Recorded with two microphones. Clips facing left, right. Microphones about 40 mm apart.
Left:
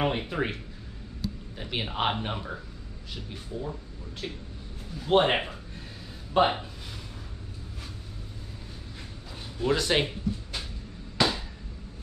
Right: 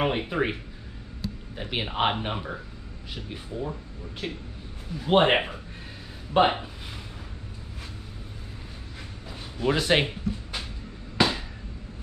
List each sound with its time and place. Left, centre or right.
0.0 s a man's voice: centre
1.6 s a man's voice: centre
9.6 s speech: centre
11.1 s a sound: centre